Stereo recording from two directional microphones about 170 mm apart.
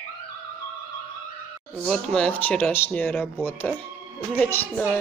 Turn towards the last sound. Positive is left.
turn(degrees=10)  # may be behind; listen again after turning